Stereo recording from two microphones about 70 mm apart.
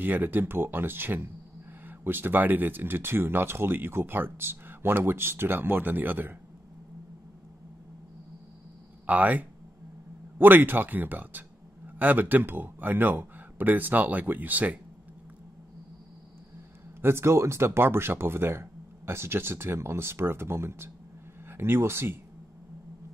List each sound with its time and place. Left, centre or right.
0.0 s speech: right
9.0 s speech: right
17.0 s speech: right